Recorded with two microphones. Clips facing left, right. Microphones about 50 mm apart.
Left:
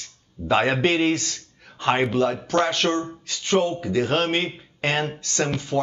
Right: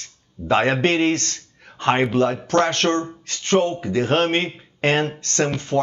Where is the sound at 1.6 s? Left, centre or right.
Right.